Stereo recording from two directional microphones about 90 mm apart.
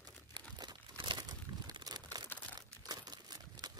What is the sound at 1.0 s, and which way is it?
Crumpling, 55° right (ahead or behind).